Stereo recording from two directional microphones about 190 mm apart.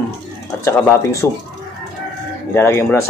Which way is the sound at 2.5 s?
15° left (ahead or behind).